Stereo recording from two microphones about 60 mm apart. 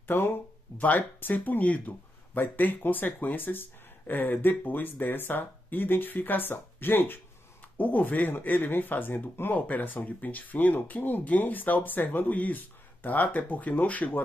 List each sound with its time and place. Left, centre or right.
0.0 s speech: left
0.7 s speech: left